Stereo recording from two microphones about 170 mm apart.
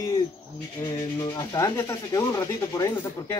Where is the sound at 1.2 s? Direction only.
20° left (ahead or behind).